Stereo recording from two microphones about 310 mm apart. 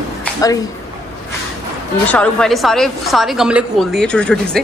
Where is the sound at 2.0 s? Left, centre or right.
Centre.